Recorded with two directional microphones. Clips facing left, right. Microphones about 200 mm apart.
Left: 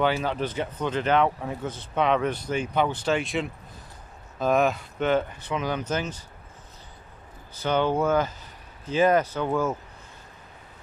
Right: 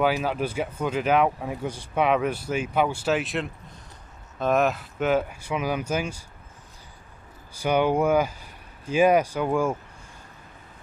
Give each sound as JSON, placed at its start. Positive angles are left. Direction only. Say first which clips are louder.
{"t": 0.0, "sound": "speech", "louder": "right 1 dB", "side_deg": -5}
{"t": 7.5, "sound": "speech", "louder": "right 2 dB", "side_deg": -10}